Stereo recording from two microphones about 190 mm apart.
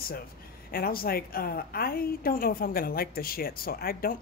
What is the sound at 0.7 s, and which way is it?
A woman's voice, 50° left (ahead or behind).